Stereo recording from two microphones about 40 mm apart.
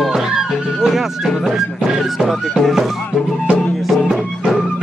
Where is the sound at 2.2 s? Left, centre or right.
Centre.